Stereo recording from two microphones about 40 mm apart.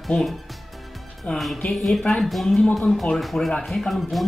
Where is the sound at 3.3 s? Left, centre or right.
Left.